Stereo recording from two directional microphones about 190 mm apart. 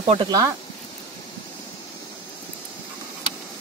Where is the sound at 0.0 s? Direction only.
25° right (ahead or behind).